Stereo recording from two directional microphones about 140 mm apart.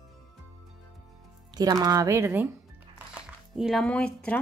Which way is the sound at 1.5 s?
30° right (ahead or behind).